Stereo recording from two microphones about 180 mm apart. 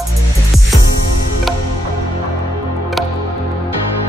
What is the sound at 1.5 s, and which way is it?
Music, centre (ahead or behind).